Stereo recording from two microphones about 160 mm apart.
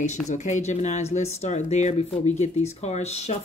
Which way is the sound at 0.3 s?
50° left (ahead or behind).